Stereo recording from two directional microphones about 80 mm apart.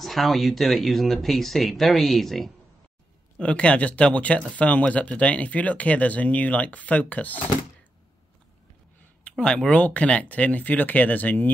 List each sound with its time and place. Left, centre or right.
0.0 s speech: centre
3.3 s speech: centre
9.2 s speech: centre